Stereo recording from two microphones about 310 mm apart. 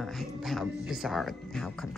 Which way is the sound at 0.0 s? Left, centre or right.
Centre.